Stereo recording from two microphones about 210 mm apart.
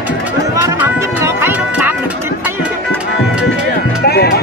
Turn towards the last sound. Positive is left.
turn(degrees=50)  # may be behind; listen again after turning